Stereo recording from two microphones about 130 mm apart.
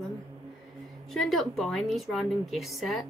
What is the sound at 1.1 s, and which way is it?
Speech, centre (ahead or behind).